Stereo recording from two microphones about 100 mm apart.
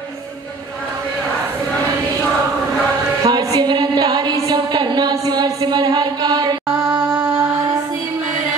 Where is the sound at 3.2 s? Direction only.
45° right (ahead or behind).